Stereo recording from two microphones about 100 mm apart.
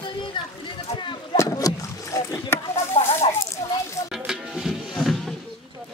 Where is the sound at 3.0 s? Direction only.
70° left (ahead or behind).